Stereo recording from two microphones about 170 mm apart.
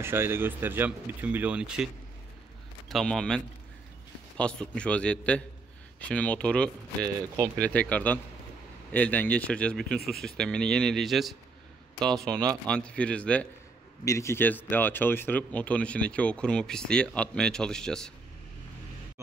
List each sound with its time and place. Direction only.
0.0 s speech: 15° right (ahead or behind)
2.9 s speech: centre (ahead or behind)
7.0 s speech: 20° right (ahead or behind)
7.5 s speech: 5° left (ahead or behind)
12.6 s speech: 5° left (ahead or behind)